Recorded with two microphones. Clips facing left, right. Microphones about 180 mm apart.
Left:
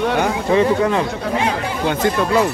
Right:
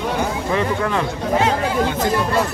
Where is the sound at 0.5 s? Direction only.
20° left (ahead or behind).